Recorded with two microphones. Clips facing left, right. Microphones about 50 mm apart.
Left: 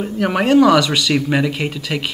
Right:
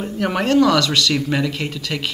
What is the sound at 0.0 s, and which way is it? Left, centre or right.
Speech, centre.